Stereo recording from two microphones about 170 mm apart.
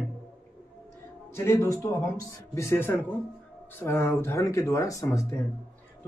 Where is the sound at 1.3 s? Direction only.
15° left (ahead or behind).